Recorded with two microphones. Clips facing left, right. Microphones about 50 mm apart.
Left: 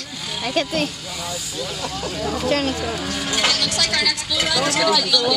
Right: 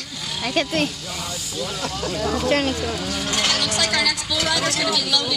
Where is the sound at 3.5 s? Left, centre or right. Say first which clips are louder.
Right 1 dB; right.